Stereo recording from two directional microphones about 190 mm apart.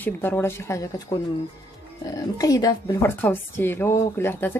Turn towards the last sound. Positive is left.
turn(degrees=10)  # may be behind; listen again after turning